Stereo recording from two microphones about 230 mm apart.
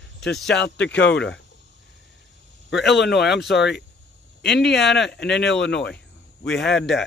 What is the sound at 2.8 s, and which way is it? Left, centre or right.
Speech, left.